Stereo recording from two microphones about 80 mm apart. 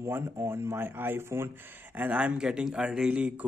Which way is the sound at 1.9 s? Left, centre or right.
Centre.